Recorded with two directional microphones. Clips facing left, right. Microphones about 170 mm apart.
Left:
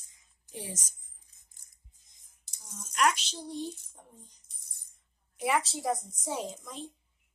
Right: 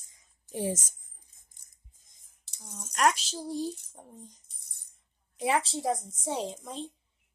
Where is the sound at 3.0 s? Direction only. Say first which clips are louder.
Right 2 dB; 35° right (ahead or behind).